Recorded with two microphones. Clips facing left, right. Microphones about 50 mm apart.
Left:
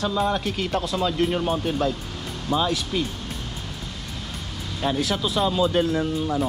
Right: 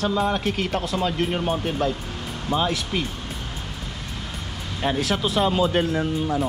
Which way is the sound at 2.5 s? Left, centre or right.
Right.